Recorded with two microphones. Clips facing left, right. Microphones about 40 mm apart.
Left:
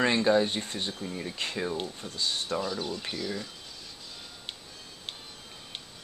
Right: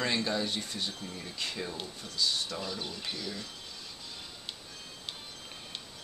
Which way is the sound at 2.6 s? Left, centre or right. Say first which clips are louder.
Left 5 dB; centre.